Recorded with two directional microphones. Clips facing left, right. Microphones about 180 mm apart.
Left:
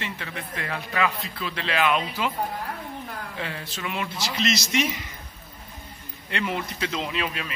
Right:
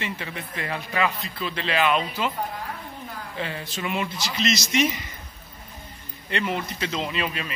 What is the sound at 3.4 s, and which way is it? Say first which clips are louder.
A man's voice: right 4 dB; centre (ahead or behind).